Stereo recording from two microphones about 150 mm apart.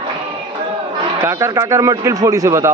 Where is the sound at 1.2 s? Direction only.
20° right (ahead or behind).